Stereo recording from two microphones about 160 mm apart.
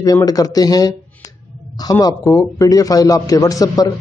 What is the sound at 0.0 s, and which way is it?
A man's voice, 20° left (ahead or behind).